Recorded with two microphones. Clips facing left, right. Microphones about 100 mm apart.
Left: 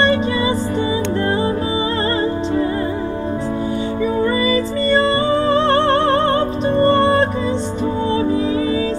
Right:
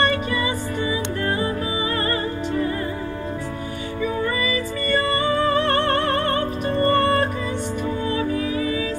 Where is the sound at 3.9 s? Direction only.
30° left (ahead or behind).